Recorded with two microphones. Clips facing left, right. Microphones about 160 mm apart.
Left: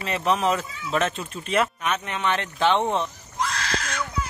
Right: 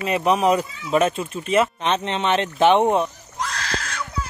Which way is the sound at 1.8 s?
25° right (ahead or behind).